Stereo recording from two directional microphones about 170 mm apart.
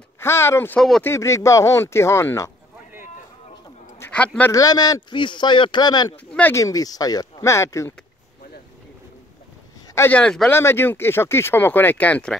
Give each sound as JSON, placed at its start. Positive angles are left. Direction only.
{"t": 0.2, "sound": "speech", "side_deg": 15}
{"t": 0.7, "sound": "speech", "side_deg": 0}
{"t": 1.0, "sound": "speech", "side_deg": 15}
{"t": 4.0, "sound": "speech", "side_deg": 10}
{"t": 4.5, "sound": "speech", "side_deg": 20}
{"t": 6.1, "sound": "speech", "side_deg": 10}
{"t": 9.9, "sound": "speech", "side_deg": 10}